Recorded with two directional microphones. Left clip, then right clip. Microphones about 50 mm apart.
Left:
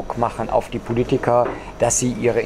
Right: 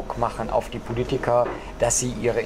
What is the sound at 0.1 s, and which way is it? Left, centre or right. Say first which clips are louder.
Speech: left 4 dB; centre.